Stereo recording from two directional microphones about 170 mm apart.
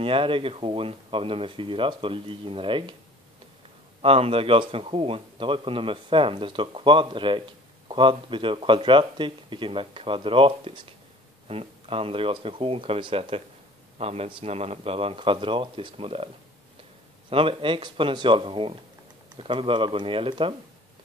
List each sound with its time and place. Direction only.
0.0 s a man's voice: 30° right (ahead or behind)
4.0 s a man's voice: 35° right (ahead or behind)
17.3 s a man's voice: 30° right (ahead or behind)